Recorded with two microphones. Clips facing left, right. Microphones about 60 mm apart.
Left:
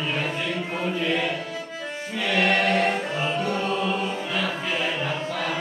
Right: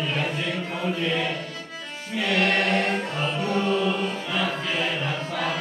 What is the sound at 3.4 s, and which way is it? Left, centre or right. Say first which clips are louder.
Music: right 5 dB; left.